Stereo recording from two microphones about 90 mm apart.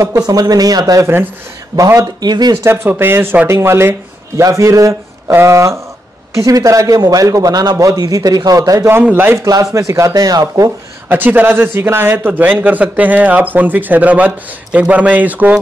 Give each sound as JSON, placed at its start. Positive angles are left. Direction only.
{"t": 0.0, "sound": "a man's voice", "side_deg": -40}
{"t": 2.2, "sound": "speech", "side_deg": -50}
{"t": 2.5, "sound": "a man's voice", "side_deg": -25}
{"t": 9.1, "sound": "a man's voice", "side_deg": -25}
{"t": 9.4, "sound": "a man's voice", "side_deg": -35}
{"t": 11.1, "sound": "a man's voice", "side_deg": -20}